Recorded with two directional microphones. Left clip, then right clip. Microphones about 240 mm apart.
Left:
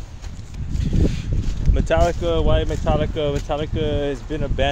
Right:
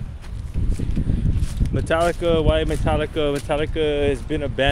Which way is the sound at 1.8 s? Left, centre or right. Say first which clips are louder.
Left 1 dB; centre.